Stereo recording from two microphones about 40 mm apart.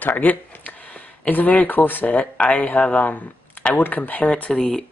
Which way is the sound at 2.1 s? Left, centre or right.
Left.